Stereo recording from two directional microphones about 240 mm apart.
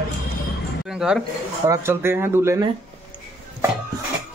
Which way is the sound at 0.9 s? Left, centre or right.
Centre.